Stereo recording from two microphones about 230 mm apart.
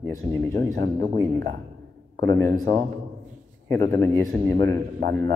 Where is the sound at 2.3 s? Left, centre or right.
Centre.